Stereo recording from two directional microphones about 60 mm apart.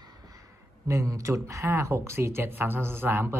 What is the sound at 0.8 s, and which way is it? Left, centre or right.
A man's voice, right.